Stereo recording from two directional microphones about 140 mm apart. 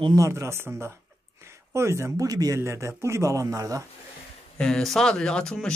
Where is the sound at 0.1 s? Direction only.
20° right (ahead or behind).